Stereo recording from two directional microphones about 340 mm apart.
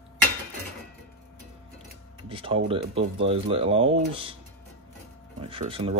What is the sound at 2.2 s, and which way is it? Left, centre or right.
Speech, centre.